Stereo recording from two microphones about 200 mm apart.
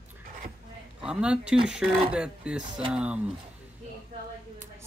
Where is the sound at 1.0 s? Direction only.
5° right (ahead or behind).